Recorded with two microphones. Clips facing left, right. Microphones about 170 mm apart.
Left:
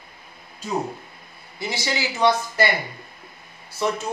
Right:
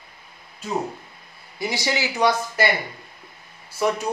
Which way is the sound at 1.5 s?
15° right (ahead or behind).